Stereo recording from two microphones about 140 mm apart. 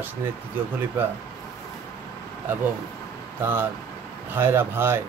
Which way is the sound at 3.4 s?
15° right (ahead or behind).